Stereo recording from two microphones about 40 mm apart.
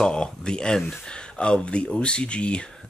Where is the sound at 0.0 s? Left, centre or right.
Left.